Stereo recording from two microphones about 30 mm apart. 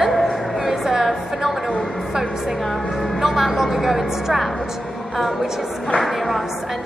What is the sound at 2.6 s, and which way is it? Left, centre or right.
Music, centre.